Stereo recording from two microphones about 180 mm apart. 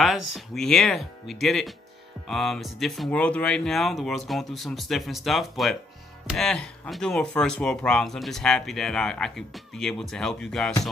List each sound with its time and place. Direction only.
0.0 s speech: centre (ahead or behind)